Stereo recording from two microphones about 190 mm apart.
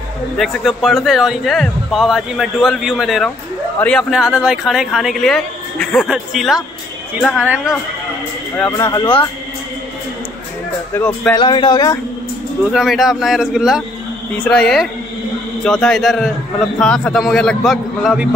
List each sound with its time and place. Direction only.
0.4 s speech: centre (ahead or behind)
8.7 s speech: 15° left (ahead or behind)
11.0 s speech: 10° left (ahead or behind)
11.3 s speech: 25° left (ahead or behind)
12.7 s speech: centre (ahead or behind)